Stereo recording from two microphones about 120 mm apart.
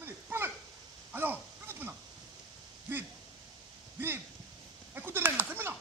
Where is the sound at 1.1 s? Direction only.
15° right (ahead or behind).